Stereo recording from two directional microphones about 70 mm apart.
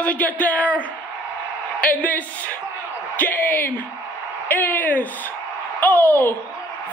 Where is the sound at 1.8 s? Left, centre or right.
Left.